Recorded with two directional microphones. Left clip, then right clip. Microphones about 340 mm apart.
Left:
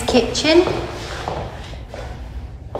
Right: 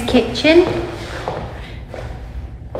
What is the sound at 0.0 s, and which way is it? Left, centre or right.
Speech, centre.